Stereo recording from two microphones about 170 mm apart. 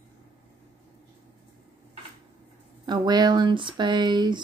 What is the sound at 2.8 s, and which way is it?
Speech, 25° right (ahead or behind).